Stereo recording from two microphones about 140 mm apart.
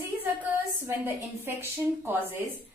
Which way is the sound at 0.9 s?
15° right (ahead or behind).